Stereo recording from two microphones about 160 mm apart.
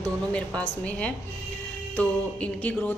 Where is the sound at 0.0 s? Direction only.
10° left (ahead or behind).